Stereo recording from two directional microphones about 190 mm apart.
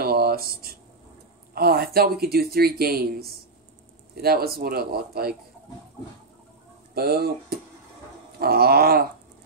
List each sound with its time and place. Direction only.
0.0 s a sound: 55° right (ahead or behind)
1.5 s speech: 55° right (ahead or behind)
7.0 s speech: 55° right (ahead or behind)